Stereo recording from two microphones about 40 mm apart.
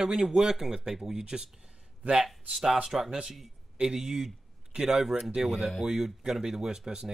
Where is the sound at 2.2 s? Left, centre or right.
Centre.